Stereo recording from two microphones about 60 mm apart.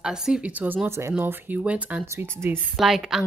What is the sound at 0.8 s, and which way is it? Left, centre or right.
Speech, right.